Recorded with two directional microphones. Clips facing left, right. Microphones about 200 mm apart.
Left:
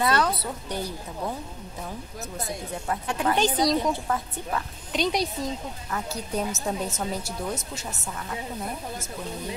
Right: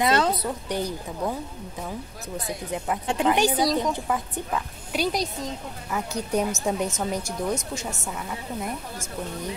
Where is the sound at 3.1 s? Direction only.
20° right (ahead or behind).